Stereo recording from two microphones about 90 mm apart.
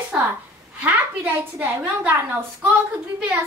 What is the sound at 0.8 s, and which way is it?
A woman's voice, 20° right (ahead or behind).